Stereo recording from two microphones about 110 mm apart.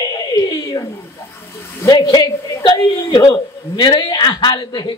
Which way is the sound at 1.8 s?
40° left (ahead or behind).